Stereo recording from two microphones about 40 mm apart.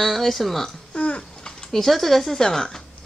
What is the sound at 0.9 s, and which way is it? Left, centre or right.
Speech, left.